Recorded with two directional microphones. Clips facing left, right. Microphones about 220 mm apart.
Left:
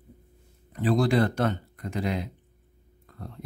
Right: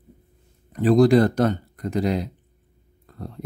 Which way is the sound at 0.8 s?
45° right (ahead or behind).